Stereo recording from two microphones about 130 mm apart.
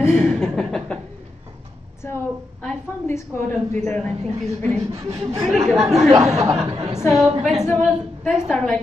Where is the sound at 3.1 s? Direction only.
15° left (ahead or behind).